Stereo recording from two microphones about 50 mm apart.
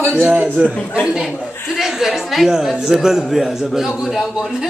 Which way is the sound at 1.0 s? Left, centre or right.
Centre.